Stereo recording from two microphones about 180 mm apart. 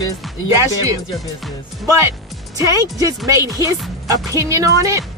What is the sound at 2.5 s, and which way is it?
Speech, 20° right (ahead or behind).